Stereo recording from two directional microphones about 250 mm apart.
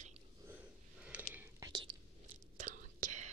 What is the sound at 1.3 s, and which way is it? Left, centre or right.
Whispering, centre.